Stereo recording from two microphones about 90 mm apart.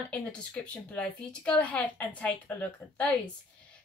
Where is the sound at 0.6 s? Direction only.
10° left (ahead or behind).